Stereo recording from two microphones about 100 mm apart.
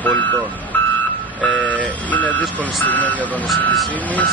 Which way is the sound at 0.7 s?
15° left (ahead or behind).